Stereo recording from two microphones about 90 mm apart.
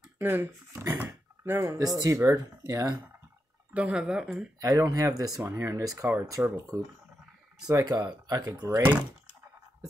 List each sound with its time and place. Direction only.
0.2 s speech: 25° right (ahead or behind)
0.9 s a sound: 25° right (ahead or behind)
1.7 s speech: 40° right (ahead or behind)
3.7 s speech: 15° right (ahead or behind)
4.6 s speech: 40° right (ahead or behind)